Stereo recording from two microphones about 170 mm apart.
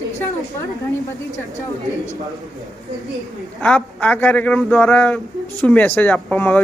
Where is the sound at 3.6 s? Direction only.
5° left (ahead or behind).